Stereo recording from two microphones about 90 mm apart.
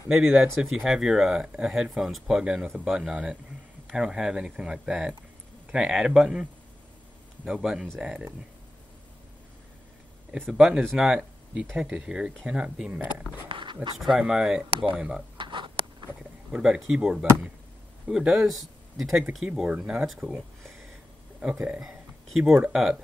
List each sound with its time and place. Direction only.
0.1 s speech: 5° right (ahead or behind)
7.4 s speech: 10° right (ahead or behind)
10.3 s speech: 10° right (ahead or behind)
13.5 s a sound: 65° right (ahead or behind)
13.9 s speech: 5° right (ahead or behind)
15.3 s a sound: 60° right (ahead or behind)
16.5 s speech: 10° right (ahead or behind)